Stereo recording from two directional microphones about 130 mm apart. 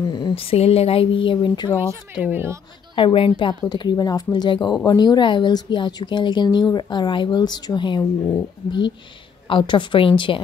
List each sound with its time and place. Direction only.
0.1 s speech: 40° left (ahead or behind)
1.8 s speech: 15° right (ahead or behind)
3.0 s a woman's voice: 45° left (ahead or behind)
9.5 s a woman's voice: 40° left (ahead or behind)